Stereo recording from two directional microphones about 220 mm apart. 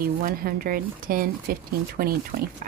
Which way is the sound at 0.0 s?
40° right (ahead or behind).